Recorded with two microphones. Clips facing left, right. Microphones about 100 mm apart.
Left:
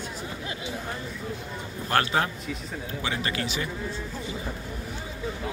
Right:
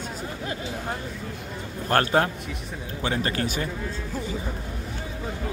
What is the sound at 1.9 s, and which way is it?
A man's voice, 45° right (ahead or behind).